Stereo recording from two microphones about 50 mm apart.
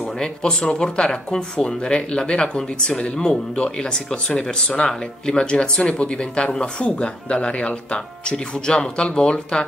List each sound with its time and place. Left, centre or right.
0.2 s speech: centre